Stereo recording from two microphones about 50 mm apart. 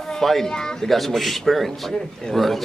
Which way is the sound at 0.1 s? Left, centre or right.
Centre.